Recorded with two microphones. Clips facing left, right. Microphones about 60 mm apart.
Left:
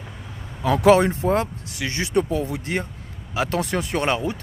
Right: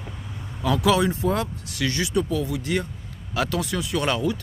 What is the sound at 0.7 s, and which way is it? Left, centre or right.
Speech, left.